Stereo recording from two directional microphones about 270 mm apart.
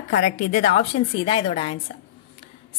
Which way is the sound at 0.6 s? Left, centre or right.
Left.